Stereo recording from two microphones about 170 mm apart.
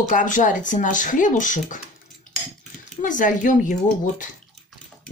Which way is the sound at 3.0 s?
50° left (ahead or behind).